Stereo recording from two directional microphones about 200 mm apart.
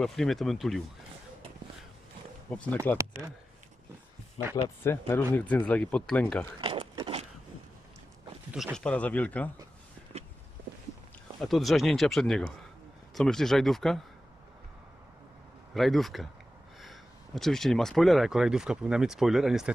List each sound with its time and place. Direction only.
0.0 s speech: centre (ahead or behind)
2.5 s speech: 5° left (ahead or behind)
4.8 s speech: 10° left (ahead or behind)
6.6 s a sound: 25° right (ahead or behind)
8.5 s speech: centre (ahead or behind)
10.1 s a sound: 30° right (ahead or behind)
11.4 s speech: centre (ahead or behind)
15.7 s speech: centre (ahead or behind)